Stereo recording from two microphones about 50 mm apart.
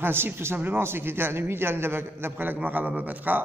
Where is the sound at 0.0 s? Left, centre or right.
Right.